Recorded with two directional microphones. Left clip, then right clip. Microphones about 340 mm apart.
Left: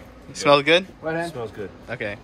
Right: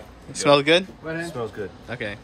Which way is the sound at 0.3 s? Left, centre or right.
Centre.